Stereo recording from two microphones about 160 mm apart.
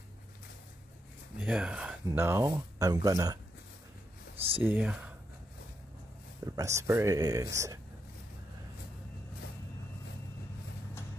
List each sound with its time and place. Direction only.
1.4 s speech: 5° right (ahead or behind)
4.6 s speech: 10° right (ahead or behind)
6.4 s speech: 20° right (ahead or behind)